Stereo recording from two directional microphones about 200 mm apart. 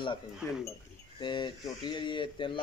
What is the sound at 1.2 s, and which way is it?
Speech, 20° left (ahead or behind).